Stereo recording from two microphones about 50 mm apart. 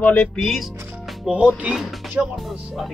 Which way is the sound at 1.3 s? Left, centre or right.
Centre.